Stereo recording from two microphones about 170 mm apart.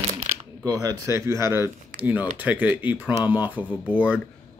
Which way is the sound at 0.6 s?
20° right (ahead or behind).